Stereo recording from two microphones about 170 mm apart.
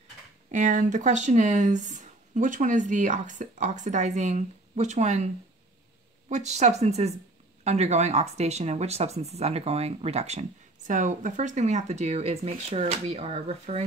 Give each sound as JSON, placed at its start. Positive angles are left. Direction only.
{"t": 0.5, "sound": "speech", "side_deg": -50}